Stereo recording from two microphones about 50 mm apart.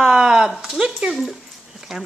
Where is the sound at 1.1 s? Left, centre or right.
Centre.